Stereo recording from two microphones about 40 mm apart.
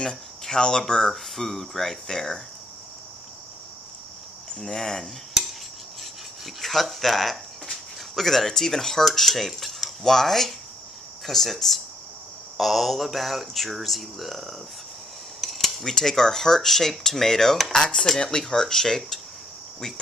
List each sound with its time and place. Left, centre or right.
0.0 s speech: centre
1.1 s cutlery: centre
2.0 s dishes: centre
4.6 s dishes: centre
6.4 s cutlery: centre
15.9 s dishes: centre